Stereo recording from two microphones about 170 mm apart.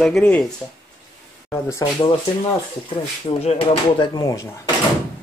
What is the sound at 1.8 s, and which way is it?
Speech, 20° left (ahead or behind).